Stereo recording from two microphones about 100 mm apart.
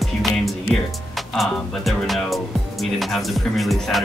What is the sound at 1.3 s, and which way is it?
Speech, centre (ahead or behind).